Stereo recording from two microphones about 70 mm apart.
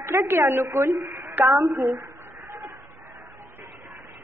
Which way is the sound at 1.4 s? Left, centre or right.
Right.